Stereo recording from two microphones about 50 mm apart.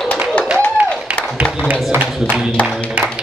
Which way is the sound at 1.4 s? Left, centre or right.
Right.